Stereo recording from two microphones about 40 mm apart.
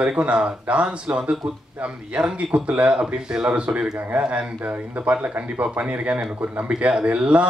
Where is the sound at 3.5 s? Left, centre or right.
Right.